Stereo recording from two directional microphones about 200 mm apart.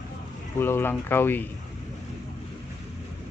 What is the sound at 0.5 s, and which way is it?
Speech, 10° left (ahead or behind).